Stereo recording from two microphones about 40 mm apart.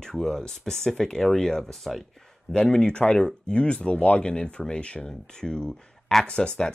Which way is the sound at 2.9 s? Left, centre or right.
Left.